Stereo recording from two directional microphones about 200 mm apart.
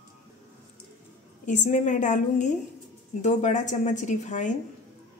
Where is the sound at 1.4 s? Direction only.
40° left (ahead or behind).